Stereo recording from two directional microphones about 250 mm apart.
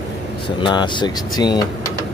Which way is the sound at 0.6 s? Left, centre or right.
Centre.